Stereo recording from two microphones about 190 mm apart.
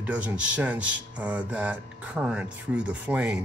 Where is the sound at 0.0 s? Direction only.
10° right (ahead or behind).